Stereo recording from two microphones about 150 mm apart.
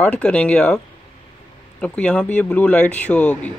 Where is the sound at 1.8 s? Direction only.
10° left (ahead or behind).